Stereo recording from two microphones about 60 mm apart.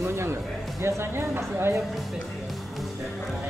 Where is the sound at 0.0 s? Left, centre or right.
Right.